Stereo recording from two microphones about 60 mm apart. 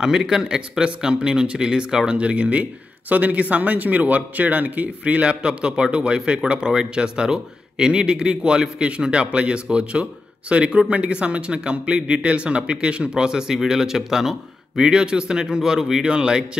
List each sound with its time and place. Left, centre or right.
0.0 s a man's voice: centre